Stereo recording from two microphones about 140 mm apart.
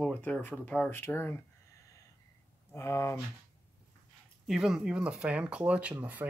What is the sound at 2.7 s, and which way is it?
Speech, 20° left (ahead or behind).